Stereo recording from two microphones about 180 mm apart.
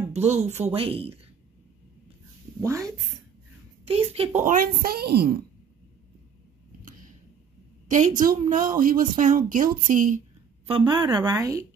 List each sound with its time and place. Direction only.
0.1 s speech: 40° right (ahead or behind)
2.6 s speech: 15° right (ahead or behind)
3.8 s speech: 35° right (ahead or behind); by 5.4 s 60° right (ahead or behind)
7.9 s speech: 45° right (ahead or behind)
10.9 s a woman's voice: 25° right (ahead or behind)